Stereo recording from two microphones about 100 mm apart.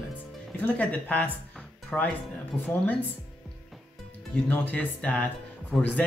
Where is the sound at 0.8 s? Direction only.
15° left (ahead or behind).